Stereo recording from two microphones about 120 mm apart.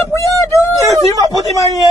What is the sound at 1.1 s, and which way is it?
Speech, 30° right (ahead or behind).